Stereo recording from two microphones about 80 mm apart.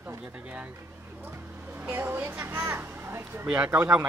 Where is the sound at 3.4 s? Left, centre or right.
Centre.